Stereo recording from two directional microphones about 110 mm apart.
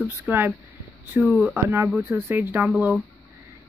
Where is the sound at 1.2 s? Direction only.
5° right (ahead or behind).